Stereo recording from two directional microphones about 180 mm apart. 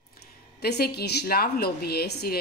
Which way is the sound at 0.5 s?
65° left (ahead or behind).